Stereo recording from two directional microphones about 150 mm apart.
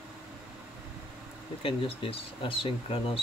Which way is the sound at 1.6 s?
35° left (ahead or behind).